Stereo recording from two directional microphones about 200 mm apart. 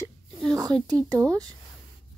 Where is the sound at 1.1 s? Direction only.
15° right (ahead or behind).